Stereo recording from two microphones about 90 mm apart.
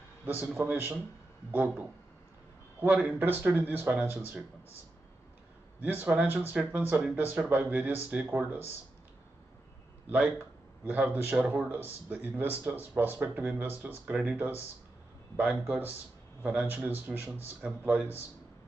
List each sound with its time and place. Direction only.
0.4 s a man's voice: 20° right (ahead or behind)
6.0 s speech: 20° right (ahead or behind)
10.0 s a man's voice: 15° right (ahead or behind)
16.4 s a man's voice: 20° right (ahead or behind)